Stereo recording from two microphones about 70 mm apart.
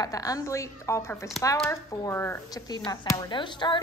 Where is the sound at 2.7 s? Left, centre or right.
Left.